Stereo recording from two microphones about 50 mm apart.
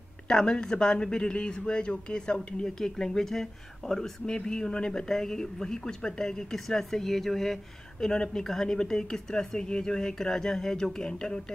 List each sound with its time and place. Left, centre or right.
0.3 s speech: centre
4.3 s speech: centre
8.1 s speech: centre